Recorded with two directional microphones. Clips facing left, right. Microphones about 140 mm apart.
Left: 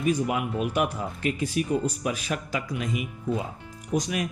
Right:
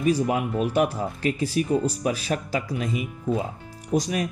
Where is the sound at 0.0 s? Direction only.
35° right (ahead or behind).